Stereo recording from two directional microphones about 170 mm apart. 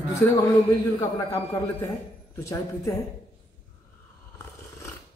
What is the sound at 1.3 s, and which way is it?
Speech, 20° left (ahead or behind).